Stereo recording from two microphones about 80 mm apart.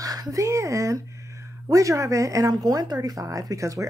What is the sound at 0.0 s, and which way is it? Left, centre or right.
Speech, right.